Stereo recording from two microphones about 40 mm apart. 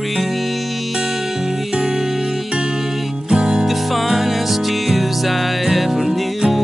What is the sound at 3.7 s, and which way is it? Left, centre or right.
Music, centre.